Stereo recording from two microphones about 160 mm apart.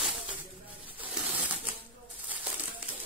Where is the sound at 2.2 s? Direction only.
10° right (ahead or behind).